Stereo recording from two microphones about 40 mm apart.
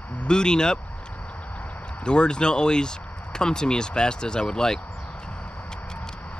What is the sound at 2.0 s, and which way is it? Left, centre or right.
Speech, left.